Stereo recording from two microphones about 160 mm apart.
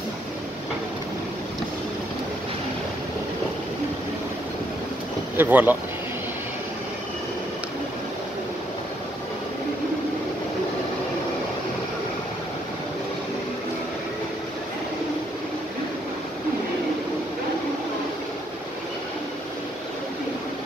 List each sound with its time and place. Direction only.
5.4 s speech: 10° right (ahead or behind)